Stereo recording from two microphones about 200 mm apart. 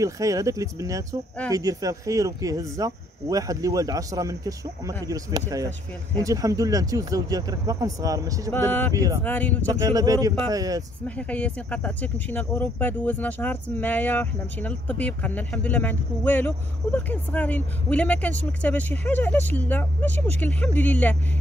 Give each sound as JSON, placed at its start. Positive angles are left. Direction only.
{"t": 0.0, "sound": "speech", "side_deg": -15}
{"t": 8.5, "sound": "speech", "side_deg": 10}
{"t": 8.9, "sound": "speech", "side_deg": -20}
{"t": 9.2, "sound": "speech", "side_deg": 10}
{"t": 9.7, "sound": "speech", "side_deg": -15}
{"t": 11.1, "sound": "speech", "side_deg": 5}